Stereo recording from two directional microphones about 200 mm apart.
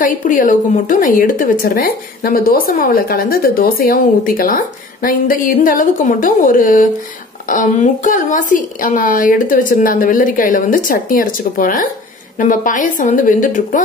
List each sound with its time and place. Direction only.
0.0 s a woman's voice: 40° left (ahead or behind)